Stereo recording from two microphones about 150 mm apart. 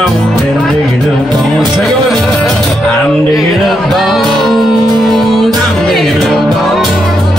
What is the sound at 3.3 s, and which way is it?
Music, centre (ahead or behind).